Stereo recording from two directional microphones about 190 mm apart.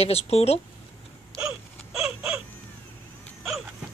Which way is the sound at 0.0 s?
30° left (ahead or behind).